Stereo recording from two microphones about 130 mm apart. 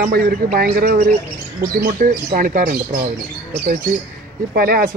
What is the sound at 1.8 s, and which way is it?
Speech, 90° right.